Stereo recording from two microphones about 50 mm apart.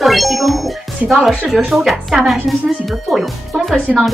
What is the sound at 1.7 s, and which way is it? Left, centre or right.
Speech, centre.